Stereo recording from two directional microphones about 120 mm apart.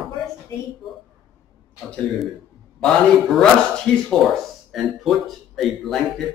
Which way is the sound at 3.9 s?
10° left (ahead or behind).